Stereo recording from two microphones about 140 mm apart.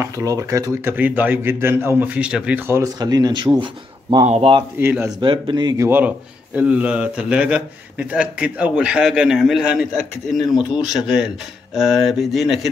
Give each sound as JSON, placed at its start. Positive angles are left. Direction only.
{"t": 0.0, "sound": "a man's voice", "side_deg": -25}
{"t": 4.3, "sound": "speech", "side_deg": -50}
{"t": 4.7, "sound": "a man's voice", "side_deg": -15}
{"t": 5.2, "sound": "speech", "side_deg": -35}
{"t": 5.9, "sound": "a man's voice", "side_deg": -10}